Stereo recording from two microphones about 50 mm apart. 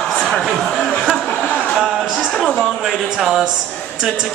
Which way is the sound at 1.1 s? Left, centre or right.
Centre.